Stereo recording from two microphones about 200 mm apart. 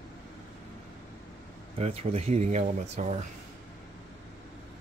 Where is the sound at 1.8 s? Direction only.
30° right (ahead or behind).